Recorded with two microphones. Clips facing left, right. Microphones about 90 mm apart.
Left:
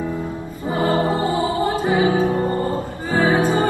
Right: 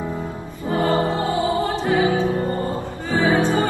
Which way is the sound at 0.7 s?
15° left (ahead or behind).